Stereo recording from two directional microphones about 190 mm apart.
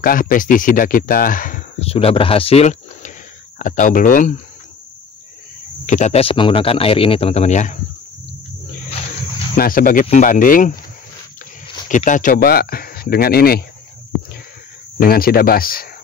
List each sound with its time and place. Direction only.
0.0 s speech: 45° left (ahead or behind)
5.9 s speech: 40° left (ahead or behind)
9.6 s speech: 50° left (ahead or behind)
11.9 s speech: 40° left (ahead or behind)
15.0 s speech: 50° left (ahead or behind)